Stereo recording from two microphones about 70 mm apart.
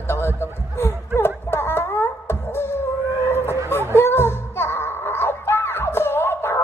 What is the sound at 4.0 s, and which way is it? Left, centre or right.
Music, left.